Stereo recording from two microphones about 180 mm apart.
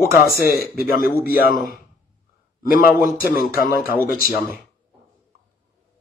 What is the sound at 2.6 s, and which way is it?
A man's voice, 50° left (ahead or behind).